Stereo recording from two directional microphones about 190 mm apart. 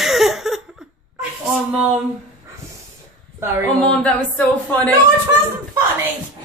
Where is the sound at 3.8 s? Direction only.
5° left (ahead or behind).